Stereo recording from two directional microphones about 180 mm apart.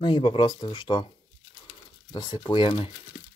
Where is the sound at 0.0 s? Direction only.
30° left (ahead or behind).